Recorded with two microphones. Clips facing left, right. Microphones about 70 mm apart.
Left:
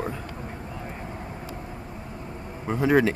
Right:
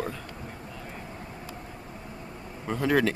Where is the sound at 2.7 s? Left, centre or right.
Centre.